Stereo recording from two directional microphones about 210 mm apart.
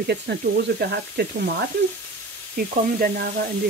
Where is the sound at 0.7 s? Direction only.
50° right (ahead or behind).